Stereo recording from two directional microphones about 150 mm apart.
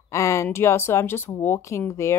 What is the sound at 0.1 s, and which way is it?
Speech, 20° left (ahead or behind).